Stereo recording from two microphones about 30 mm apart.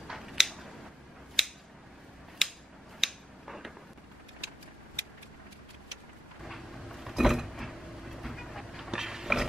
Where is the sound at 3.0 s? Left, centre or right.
Centre.